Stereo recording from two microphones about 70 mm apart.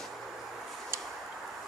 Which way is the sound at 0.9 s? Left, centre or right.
Right.